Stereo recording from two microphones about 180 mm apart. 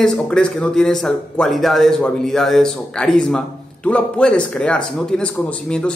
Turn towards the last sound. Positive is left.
turn(degrees=5)  # may be behind; listen again after turning